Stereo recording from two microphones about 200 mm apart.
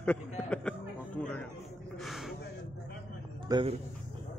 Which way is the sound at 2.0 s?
Centre (ahead or behind).